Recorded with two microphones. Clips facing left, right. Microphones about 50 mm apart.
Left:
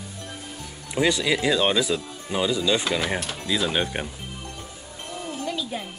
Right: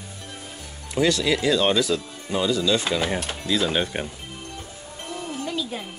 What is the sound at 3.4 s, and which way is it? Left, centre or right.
Speech, centre.